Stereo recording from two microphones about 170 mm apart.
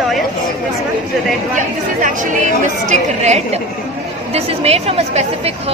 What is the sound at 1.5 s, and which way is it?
A woman's voice, 50° right (ahead or behind).